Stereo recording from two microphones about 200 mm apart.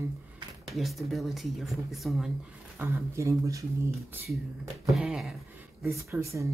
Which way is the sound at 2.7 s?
10° right (ahead or behind).